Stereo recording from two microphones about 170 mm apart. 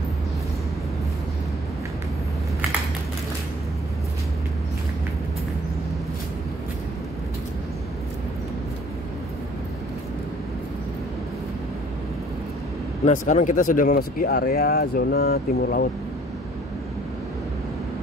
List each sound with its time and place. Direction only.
13.3 s speech: 45° left (ahead or behind); by 15.9 s 65° left (ahead or behind)